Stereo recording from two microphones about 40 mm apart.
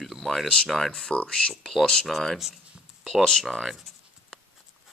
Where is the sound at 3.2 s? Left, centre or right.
Centre.